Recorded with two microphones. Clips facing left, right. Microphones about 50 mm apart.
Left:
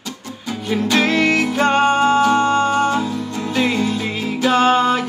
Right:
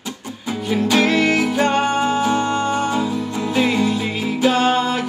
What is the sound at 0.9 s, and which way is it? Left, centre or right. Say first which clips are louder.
Music: even; centre.